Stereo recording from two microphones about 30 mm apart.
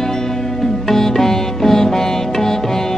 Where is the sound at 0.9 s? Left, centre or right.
Centre.